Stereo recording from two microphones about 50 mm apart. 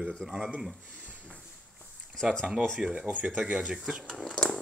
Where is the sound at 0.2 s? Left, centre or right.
Centre.